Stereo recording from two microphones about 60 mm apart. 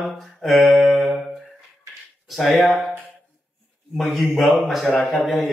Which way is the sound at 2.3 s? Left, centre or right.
Centre.